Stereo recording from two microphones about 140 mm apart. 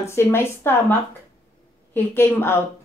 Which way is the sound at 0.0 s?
20° left (ahead or behind).